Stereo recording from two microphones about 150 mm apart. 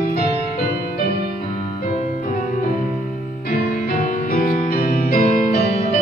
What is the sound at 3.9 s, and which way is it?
Music, 65° left (ahead or behind).